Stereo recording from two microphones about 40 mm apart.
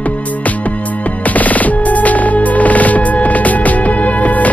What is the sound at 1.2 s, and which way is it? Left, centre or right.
Music, left.